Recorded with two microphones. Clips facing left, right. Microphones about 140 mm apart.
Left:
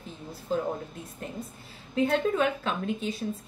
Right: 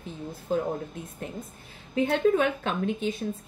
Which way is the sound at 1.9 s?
50° right (ahead or behind).